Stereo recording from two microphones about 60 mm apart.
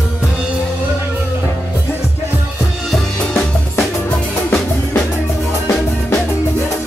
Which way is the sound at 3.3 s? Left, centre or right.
Centre.